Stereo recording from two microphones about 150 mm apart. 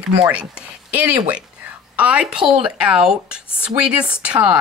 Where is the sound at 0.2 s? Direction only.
5° right (ahead or behind).